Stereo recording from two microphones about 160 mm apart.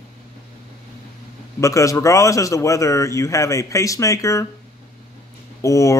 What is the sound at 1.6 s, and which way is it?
Speech, 20° left (ahead or behind).